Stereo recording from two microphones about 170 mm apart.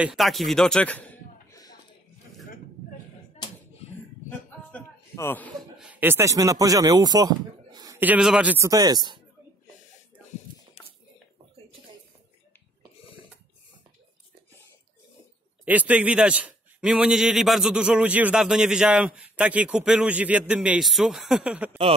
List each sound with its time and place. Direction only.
0.0 s a man's voice: centre (ahead or behind)
4.3 s a sound: 15° left (ahead or behind)
5.8 s speech: 10° right (ahead or behind)
8.0 s a man's voice: 5° right (ahead or behind)
8.6 s speech: 20° right (ahead or behind)
15.6 s a man's voice: 10° right (ahead or behind)